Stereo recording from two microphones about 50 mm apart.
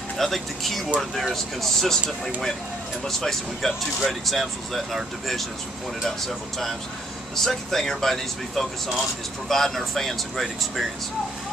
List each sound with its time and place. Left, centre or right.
0.2 s speech: centre